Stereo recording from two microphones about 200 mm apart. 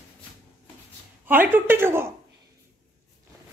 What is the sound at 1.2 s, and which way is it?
Speech, 10° right (ahead or behind).